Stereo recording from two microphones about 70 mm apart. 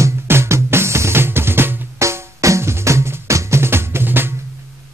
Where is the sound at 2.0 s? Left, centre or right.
Right.